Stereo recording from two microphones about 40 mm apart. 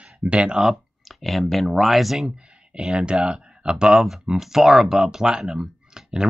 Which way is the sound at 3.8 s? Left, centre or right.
Centre.